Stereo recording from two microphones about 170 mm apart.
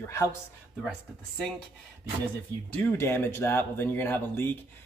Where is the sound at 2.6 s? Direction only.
10° left (ahead or behind).